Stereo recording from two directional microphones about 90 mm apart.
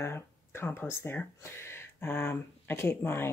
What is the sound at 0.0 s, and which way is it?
Speech, 25° left (ahead or behind).